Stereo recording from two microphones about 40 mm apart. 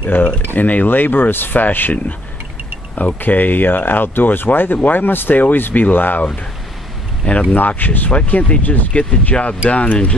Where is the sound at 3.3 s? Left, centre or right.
Left.